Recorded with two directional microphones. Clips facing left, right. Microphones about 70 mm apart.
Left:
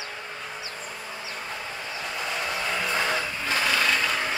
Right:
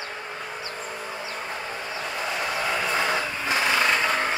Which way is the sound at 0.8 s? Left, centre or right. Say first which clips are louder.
Right 3 dB; right.